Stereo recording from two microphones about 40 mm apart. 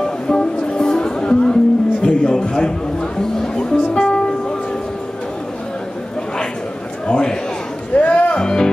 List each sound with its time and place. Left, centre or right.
0.0 s music: centre
7.1 s a sound: centre
8.0 s music: left
8.4 s music: centre